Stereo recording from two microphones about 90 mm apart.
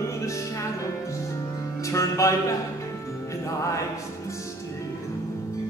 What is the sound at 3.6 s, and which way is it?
Music, 35° left (ahead or behind).